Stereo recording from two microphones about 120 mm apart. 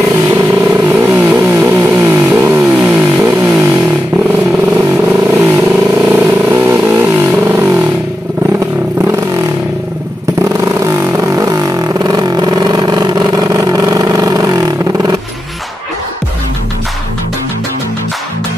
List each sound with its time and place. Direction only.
0.3 s vehicle: 20° right (ahead or behind)
4.7 s vehicle: 15° right (ahead or behind)
10.6 s vehicle: 25° right (ahead or behind)